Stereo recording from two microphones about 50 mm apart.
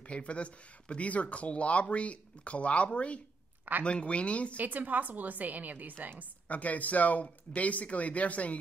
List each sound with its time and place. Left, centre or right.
0.1 s speech: left
4.6 s a woman's voice: right
6.5 s speech: left